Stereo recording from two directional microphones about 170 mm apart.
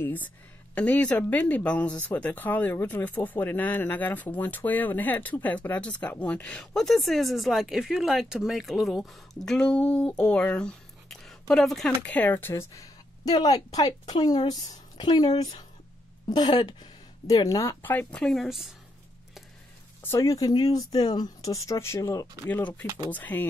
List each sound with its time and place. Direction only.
0.0 s a woman's voice: 10° left (ahead or behind)
20.0 s speech: 15° left (ahead or behind)